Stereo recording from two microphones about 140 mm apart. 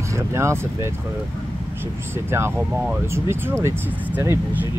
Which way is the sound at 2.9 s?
15° right (ahead or behind).